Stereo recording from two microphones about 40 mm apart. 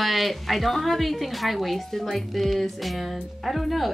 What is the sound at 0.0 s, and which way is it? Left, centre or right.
Speech, centre.